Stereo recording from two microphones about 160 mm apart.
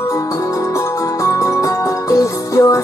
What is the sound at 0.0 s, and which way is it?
Music, 20° left (ahead or behind).